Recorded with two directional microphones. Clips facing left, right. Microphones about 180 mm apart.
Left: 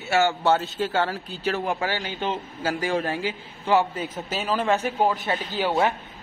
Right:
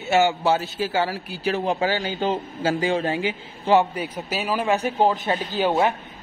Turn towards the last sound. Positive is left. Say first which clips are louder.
# right 2 dB
turn(degrees=-20)  # may be behind; listen again after turning